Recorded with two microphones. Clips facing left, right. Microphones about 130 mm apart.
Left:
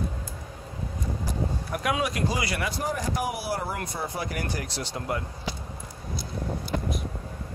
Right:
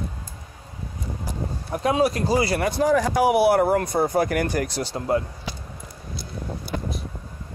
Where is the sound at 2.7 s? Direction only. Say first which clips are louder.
Right 10 dB; 80° right; by 3.8 s 60° right (ahead or behind).